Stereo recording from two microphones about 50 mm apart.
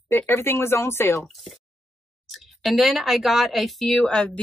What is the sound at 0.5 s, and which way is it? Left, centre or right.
Speech, left.